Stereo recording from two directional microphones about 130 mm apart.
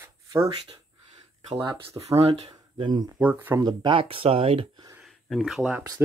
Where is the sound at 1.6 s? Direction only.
45° right (ahead or behind).